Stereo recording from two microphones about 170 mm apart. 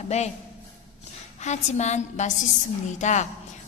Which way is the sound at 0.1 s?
40° left (ahead or behind).